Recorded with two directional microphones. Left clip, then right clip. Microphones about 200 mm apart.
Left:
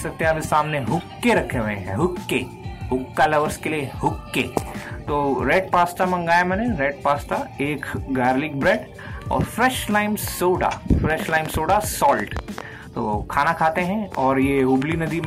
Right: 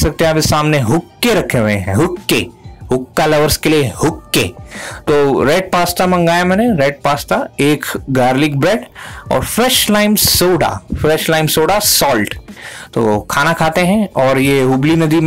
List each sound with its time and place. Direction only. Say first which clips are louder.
0.0 s speech: right 9 dB; 60° right (ahead or behind)
3.4 s speech: right 12 dB; 65° right (ahead or behind)